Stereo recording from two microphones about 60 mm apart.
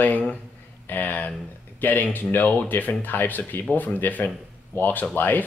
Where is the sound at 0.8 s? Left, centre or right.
Left.